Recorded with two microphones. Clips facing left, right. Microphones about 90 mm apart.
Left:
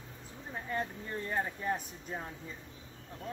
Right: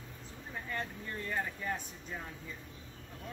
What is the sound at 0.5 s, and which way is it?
Speech, 20° left (ahead or behind).